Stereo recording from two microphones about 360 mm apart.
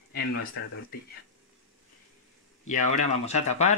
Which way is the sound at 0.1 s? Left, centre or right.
Left.